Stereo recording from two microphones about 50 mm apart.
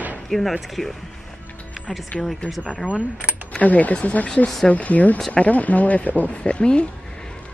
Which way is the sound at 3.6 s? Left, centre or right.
Left.